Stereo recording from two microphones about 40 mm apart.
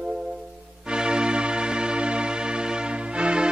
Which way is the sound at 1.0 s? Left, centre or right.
Right.